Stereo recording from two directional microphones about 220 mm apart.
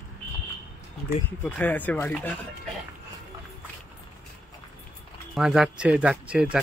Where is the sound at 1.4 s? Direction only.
5° left (ahead or behind).